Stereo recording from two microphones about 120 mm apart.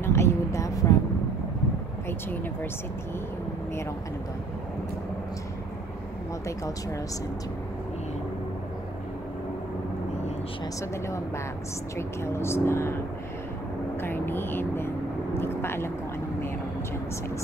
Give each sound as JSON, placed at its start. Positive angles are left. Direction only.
{"t": 0.0, "sound": "a sound", "side_deg": 25}
{"t": 6.4, "sound": "speech", "side_deg": 25}
{"t": 12.2, "sound": "speech", "side_deg": 20}
{"t": 14.0, "sound": "speech", "side_deg": 15}